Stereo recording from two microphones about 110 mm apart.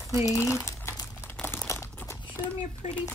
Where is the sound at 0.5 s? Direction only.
25° left (ahead or behind).